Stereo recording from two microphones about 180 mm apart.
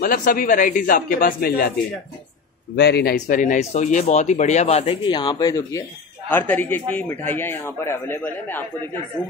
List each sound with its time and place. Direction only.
0.0 s speech: 50° left (ahead or behind)
2.7 s a man's voice: 65° left (ahead or behind)
3.2 s speech: 45° left (ahead or behind); by 8.6 s 10° left (ahead or behind)